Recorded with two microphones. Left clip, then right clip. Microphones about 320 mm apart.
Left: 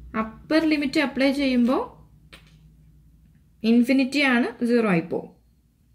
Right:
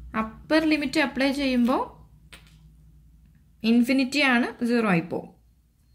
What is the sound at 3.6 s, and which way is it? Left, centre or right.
Speech, centre.